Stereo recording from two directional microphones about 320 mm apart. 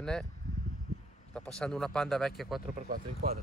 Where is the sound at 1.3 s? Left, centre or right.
Centre.